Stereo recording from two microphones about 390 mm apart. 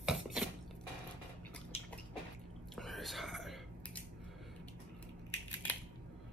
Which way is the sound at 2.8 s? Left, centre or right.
Centre.